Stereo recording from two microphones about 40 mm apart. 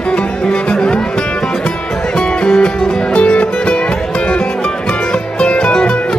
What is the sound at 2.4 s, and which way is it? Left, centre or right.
Music, left.